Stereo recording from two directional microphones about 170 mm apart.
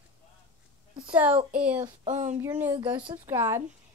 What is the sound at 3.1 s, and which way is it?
Speech, 15° right (ahead or behind).